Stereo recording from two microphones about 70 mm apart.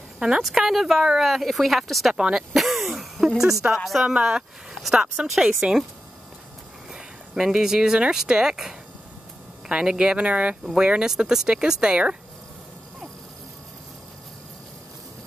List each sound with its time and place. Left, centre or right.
0.4 s speech: centre
4.1 s speech: centre
6.9 s speech: centre
10.6 s speech: centre